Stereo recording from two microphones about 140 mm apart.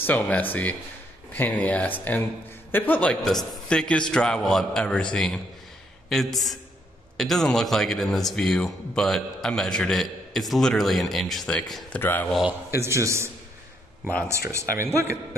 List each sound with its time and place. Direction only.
0.0 s a man's voice: 10° left (ahead or behind)
12.4 s speech: 20° right (ahead or behind)